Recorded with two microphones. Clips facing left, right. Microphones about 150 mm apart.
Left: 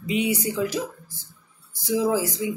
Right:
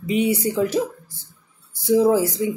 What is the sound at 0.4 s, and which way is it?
Speech, 35° right (ahead or behind).